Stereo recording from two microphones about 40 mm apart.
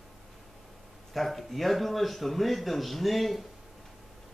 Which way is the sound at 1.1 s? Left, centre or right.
Centre.